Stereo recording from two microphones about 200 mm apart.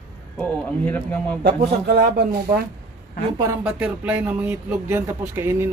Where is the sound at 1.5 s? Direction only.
50° right (ahead or behind).